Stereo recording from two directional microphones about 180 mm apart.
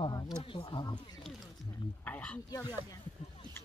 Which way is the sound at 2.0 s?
5° left (ahead or behind).